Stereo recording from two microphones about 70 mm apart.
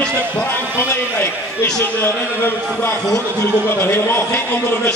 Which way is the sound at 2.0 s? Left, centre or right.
Left.